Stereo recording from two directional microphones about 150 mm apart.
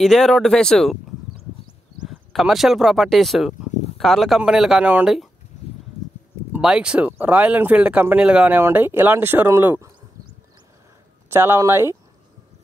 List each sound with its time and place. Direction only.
0.0 s speech: centre (ahead or behind)
2.0 s speech: centre (ahead or behind)
6.5 s speech: 5° right (ahead or behind)
11.2 s speech: 15° right (ahead or behind)